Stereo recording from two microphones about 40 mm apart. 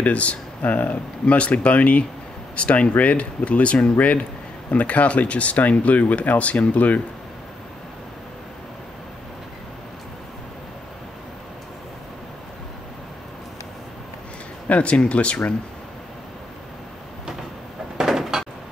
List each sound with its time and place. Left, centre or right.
0.0 s speech: left
14.7 s speech: left
17.9 s door: centre